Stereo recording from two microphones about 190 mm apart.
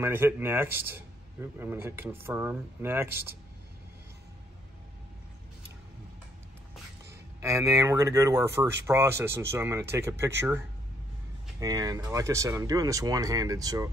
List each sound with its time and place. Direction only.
0.0 s speech: 10° right (ahead or behind)
7.1 s speech: 15° right (ahead or behind)
11.6 s speech: 20° right (ahead or behind)